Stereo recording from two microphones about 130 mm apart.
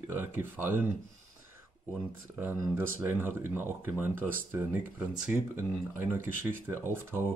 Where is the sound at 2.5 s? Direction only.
25° right (ahead or behind).